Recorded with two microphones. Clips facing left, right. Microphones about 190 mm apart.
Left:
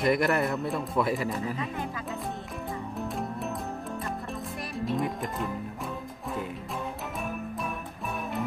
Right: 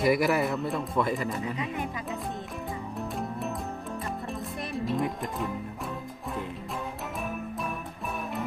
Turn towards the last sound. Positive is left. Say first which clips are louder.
# even
turn(degrees=0)  # may be behind; listen again after turning